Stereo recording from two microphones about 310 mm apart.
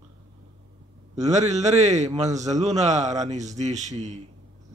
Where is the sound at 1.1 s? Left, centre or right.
Right.